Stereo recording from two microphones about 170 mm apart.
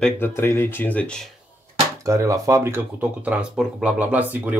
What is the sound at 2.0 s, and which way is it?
Speech, 20° right (ahead or behind).